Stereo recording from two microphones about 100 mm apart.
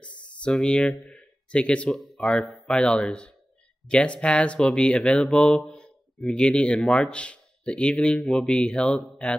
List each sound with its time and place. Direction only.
0.4 s speech: 10° left (ahead or behind)